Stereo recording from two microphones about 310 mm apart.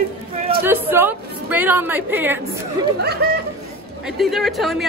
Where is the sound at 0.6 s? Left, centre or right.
Centre.